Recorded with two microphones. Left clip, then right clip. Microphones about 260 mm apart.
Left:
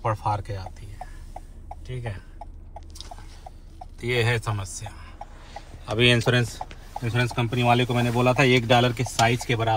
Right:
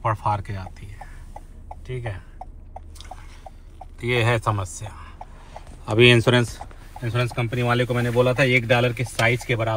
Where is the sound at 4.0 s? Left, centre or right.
Centre.